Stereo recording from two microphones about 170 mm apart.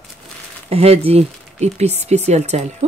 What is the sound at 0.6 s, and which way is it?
Speech, 35° right (ahead or behind).